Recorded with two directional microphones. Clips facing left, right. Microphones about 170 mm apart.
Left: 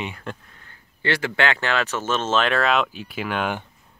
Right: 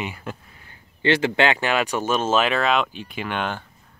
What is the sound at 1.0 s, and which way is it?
Speech, 20° right (ahead or behind).